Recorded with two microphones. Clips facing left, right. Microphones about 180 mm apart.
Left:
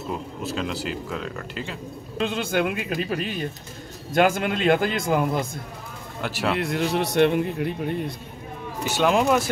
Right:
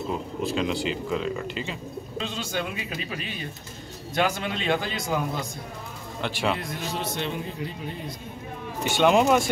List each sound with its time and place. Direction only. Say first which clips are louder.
0.1 s speech: right 1 dB; centre (ahead or behind)
2.1 s a man's voice: left 7 dB; 55° left (ahead or behind)
6.2 s speech: left 2 dB; 5° left (ahead or behind)
6.6 s a man's voice: left 8 dB; 70° left (ahead or behind)
8.8 s speech: right 1 dB; centre (ahead or behind)